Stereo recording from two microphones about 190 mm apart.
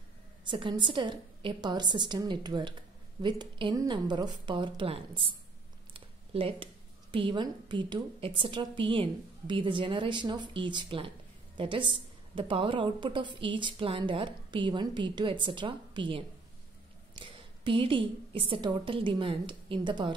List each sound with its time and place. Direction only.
0.5 s a woman's voice: 25° right (ahead or behind)